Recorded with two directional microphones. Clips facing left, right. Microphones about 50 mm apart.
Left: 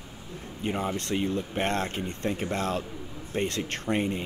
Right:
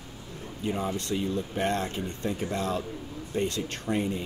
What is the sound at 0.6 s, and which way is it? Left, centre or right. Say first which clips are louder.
Speech: even; left.